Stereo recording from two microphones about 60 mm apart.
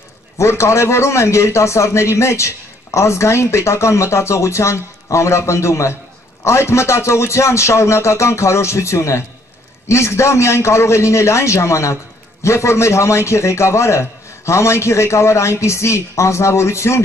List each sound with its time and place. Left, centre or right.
0.4 s a man's voice: left